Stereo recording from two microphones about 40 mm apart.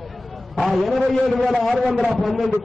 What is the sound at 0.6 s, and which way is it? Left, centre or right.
Speech, centre.